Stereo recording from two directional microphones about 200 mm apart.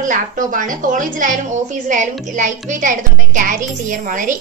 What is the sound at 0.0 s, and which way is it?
A woman's voice, 40° right (ahead or behind).